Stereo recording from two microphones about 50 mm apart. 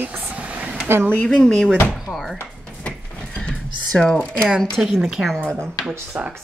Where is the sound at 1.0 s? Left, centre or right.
Centre.